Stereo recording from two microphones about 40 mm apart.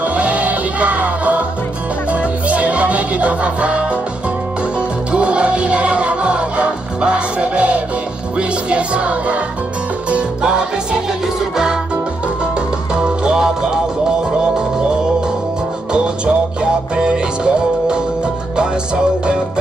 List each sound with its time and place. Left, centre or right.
0.0 s music: right
11.5 s music: centre
12.9 s music: right
16.6 s music: right